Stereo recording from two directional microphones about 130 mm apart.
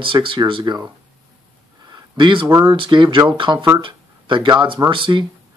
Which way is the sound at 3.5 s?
20° right (ahead or behind).